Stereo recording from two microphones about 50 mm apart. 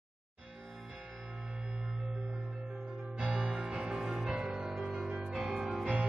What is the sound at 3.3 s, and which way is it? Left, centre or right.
Music, centre.